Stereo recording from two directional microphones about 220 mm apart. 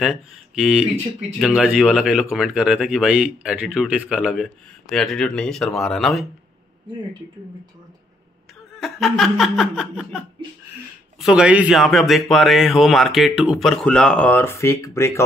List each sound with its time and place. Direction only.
0.0 s speech: centre (ahead or behind)
8.7 s speech: centre (ahead or behind)